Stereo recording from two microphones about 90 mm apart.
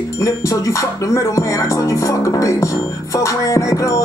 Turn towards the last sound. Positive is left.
turn(degrees=35)  # may be behind; listen again after turning